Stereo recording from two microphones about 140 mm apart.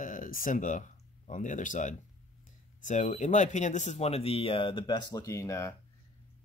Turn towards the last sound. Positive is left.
turn(degrees=20)  # may be behind; listen again after turning